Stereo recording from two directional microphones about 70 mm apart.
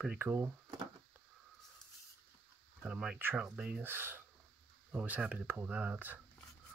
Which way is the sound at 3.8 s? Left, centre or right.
Right.